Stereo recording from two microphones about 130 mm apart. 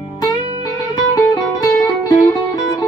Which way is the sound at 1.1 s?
25° left (ahead or behind).